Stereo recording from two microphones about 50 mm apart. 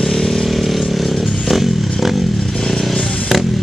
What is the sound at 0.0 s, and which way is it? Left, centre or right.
Chainsaw, centre.